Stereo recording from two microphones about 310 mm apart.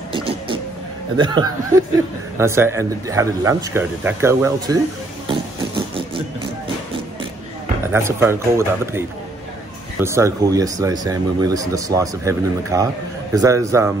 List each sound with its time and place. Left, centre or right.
0.1 s vehicle: centre
1.1 s speech: centre
7.9 s speech: centre
10.0 s speech: centre